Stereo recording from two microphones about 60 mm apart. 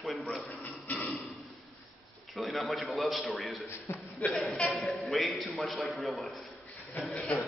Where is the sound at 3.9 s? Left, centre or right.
Left.